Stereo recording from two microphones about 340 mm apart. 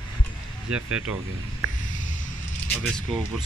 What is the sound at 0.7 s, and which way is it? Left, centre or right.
Speech, centre.